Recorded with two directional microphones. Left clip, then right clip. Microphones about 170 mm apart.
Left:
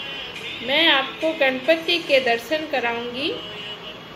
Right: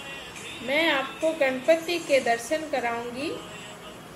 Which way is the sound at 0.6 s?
10° right (ahead or behind).